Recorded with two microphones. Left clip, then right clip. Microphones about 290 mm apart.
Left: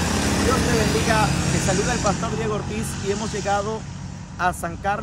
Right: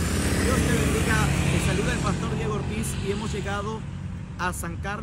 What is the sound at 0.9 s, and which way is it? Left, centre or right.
Speech, left.